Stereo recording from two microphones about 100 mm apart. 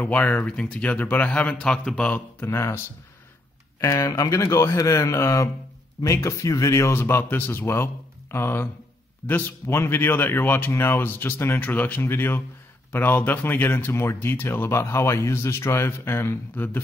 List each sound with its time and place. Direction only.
0.0 s speech: 15° left (ahead or behind)
2.4 s speech: 25° left (ahead or behind)
3.8 s speech: 30° left (ahead or behind)